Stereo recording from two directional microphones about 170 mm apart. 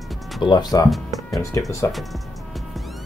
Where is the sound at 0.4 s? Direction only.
25° left (ahead or behind).